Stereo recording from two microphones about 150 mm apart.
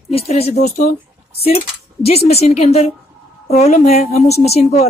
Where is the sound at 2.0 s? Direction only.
45° left (ahead or behind).